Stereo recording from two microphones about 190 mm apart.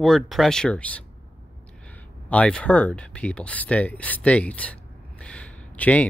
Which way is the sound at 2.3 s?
5° left (ahead or behind).